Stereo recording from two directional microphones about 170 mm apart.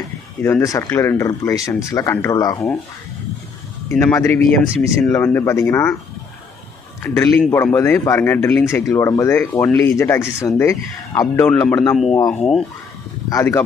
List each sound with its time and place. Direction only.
0.4 s speech: 15° left (ahead or behind)
4.0 s speech: 15° left (ahead or behind)
7.0 s speech: 15° left (ahead or behind)
7.7 s speech: 15° left (ahead or behind)
11.9 s speech: 5° left (ahead or behind)
13.3 s speech: 15° left (ahead or behind)